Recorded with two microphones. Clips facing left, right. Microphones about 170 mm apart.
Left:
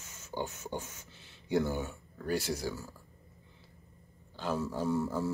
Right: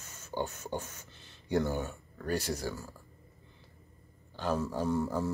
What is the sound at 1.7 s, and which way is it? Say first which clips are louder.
Speech: right 1 dB; 15° left (ahead or behind).